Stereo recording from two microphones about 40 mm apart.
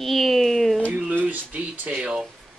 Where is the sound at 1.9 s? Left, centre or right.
Centre.